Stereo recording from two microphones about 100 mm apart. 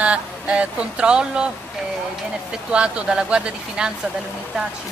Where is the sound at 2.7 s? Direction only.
10° right (ahead or behind).